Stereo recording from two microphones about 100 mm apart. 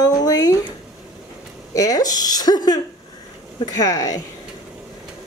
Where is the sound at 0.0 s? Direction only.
40° left (ahead or behind).